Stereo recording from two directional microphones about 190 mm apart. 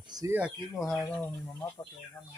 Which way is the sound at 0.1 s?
20° right (ahead or behind).